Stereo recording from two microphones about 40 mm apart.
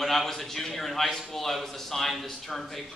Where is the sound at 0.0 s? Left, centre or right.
Centre.